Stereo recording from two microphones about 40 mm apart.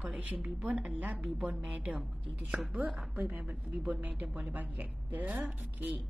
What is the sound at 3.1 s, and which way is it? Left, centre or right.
A woman's voice, right.